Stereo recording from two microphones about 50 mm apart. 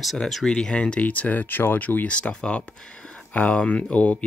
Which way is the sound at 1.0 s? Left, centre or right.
Left.